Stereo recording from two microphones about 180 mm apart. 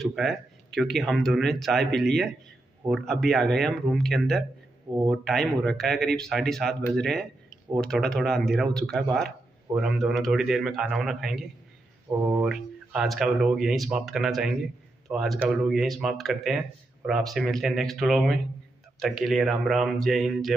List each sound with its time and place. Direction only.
0.0 s speech: centre (ahead or behind)
4.8 s speech: 20° right (ahead or behind)
5.1 s speech: centre (ahead or behind)